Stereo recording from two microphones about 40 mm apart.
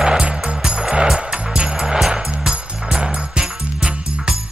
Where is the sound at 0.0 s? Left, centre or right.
Centre.